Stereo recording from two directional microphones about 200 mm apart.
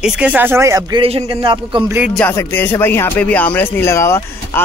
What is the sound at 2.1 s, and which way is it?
Speech, 10° left (ahead or behind).